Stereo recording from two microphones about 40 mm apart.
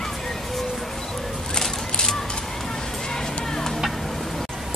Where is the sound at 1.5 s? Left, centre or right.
Centre.